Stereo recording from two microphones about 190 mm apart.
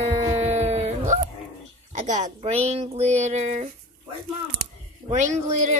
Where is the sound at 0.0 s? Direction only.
35° right (ahead or behind).